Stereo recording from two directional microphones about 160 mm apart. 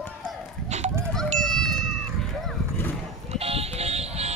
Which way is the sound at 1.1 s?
Centre (ahead or behind).